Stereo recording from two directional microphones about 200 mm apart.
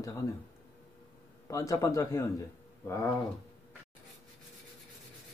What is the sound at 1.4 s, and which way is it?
A man's voice, 15° left (ahead or behind).